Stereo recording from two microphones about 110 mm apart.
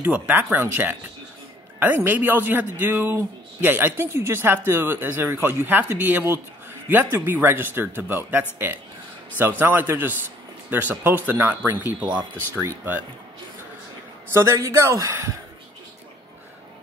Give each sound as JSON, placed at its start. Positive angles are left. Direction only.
{"t": 0.0, "sound": "speech", "side_deg": -15}
{"t": 9.6, "sound": "speech", "side_deg": -15}
{"t": 14.3, "sound": "speech", "side_deg": -25}